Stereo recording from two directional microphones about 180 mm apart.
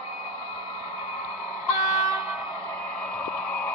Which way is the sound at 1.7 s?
20° right (ahead or behind).